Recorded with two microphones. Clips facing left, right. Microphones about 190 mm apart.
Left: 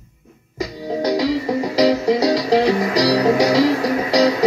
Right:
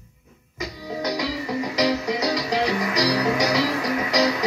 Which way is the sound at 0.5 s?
30° left (ahead or behind).